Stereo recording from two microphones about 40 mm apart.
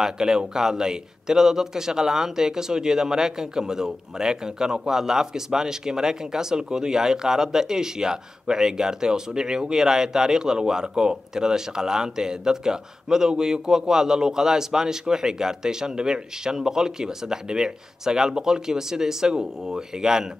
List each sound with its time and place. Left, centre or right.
0.0 s a man's voice: centre